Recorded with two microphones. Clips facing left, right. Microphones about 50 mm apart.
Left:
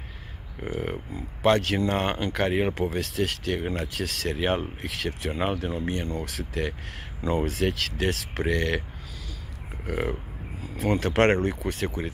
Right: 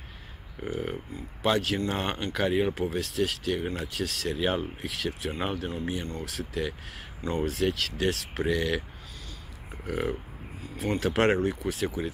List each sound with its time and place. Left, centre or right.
0.6 s speech: left
1.4 s speech: left
2.0 s speech: left
2.2 s speech: left
9.8 s speech: left
10.8 s speech: left